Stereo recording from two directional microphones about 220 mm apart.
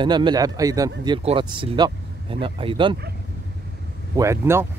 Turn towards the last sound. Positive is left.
turn(degrees=-10)  # may be behind; listen again after turning